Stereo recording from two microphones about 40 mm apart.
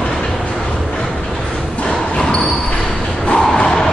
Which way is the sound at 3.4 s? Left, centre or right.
Centre.